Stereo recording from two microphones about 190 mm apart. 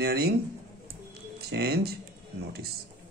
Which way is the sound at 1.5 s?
55° right (ahead or behind).